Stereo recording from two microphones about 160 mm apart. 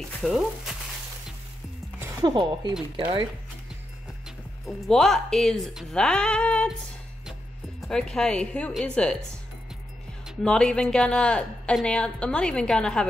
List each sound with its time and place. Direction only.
0.2 s speech: centre (ahead or behind)
2.2 s speech: 25° right (ahead or behind)
4.6 s speech: centre (ahead or behind)
7.8 s speech: 5° left (ahead or behind)
10.2 s speech: 5° left (ahead or behind)